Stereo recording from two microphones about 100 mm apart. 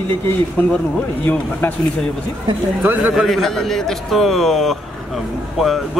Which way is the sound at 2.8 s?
15° right (ahead or behind).